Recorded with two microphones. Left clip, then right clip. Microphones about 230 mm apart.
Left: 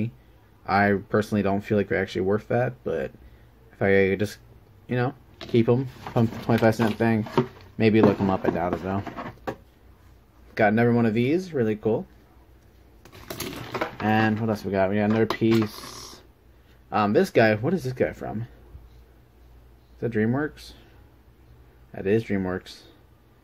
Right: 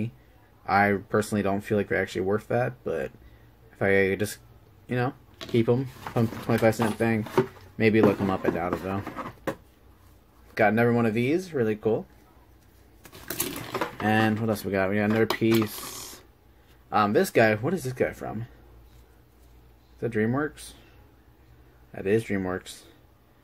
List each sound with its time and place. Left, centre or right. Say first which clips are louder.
0.7 s speech: left 1 dB; centre
10.5 s speech: left 1 dB; centre
13.7 s speech: left 1 dB; centre
16.9 s speech: left 1 dB; centre
20.0 s speech: left 1 dB; centre
21.9 s speech: left 1 dB; centre